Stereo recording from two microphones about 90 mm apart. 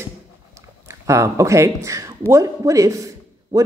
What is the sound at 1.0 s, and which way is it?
A woman's voice, 35° right (ahead or behind).